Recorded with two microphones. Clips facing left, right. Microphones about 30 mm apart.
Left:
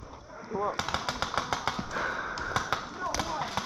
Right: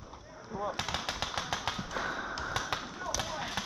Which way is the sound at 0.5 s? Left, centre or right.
Left.